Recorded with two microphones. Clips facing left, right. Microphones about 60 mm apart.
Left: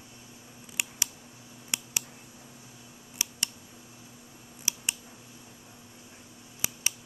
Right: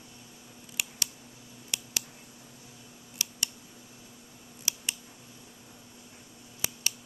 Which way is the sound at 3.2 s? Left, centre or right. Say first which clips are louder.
Left 1 dB; left.